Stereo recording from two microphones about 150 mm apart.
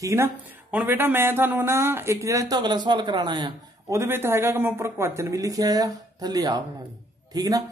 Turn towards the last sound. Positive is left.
turn(degrees=-25)  # may be behind; listen again after turning